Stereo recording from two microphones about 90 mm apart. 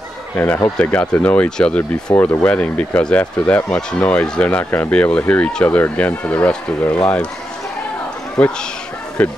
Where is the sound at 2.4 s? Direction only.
15° left (ahead or behind).